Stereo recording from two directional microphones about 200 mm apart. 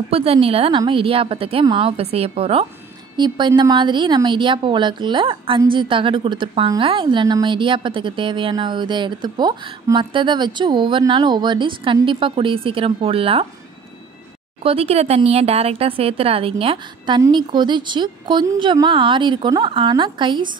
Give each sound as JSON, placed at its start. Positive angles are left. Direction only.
{"t": 0.1, "sound": "a woman's voice", "side_deg": -30}
{"t": 14.6, "sound": "a woman's voice", "side_deg": -30}